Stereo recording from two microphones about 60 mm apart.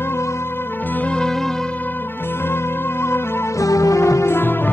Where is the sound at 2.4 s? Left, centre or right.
Left.